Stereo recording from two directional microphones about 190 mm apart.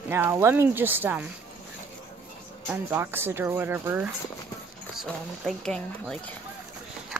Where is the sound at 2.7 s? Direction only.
10° right (ahead or behind).